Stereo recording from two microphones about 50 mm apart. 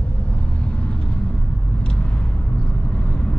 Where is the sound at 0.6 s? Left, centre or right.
Left.